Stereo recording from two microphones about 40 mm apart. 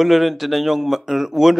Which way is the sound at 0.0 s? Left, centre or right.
Centre.